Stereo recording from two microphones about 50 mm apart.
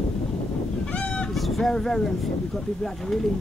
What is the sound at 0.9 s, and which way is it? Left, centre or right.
Goose, left.